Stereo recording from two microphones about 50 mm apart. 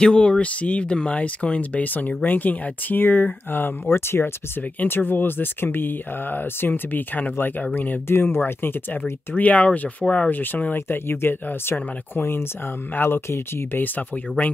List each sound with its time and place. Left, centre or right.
0.0 s speech: left
3.9 s speech: left
8.1 s speech: left
9.4 s speech: left